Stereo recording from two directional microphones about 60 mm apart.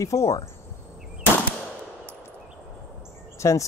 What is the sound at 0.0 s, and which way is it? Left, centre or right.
Speech, left.